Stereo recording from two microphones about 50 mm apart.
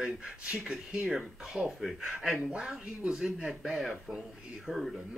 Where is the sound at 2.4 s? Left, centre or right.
Centre.